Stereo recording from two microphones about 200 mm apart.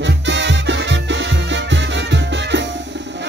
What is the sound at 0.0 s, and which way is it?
Music, 65° right (ahead or behind).